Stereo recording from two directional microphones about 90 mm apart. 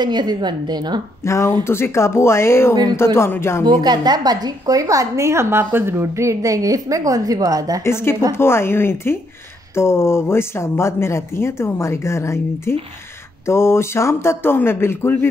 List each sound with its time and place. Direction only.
0.0 s a woman's voice: 55° right (ahead or behind)
1.2 s speech: 30° left (ahead or behind)
2.7 s a woman's voice: 50° right (ahead or behind)
3.2 s speech: 30° left (ahead or behind)
3.6 s a woman's voice: 55° right (ahead or behind)
7.8 s speech: 30° left (ahead or behind)